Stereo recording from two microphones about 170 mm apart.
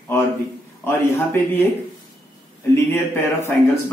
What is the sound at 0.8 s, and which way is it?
Speech, 15° left (ahead or behind).